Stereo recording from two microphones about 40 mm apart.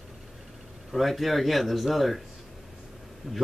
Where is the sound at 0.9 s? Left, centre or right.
Centre.